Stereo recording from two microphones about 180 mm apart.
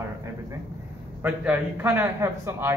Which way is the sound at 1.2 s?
10° right (ahead or behind).